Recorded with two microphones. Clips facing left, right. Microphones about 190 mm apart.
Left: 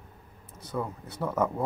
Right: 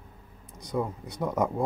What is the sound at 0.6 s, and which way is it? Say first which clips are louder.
Speech: right 3 dB; 15° right (ahead or behind).